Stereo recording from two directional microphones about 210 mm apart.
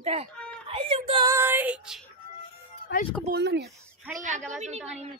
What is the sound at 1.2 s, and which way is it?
Speech, 10° right (ahead or behind).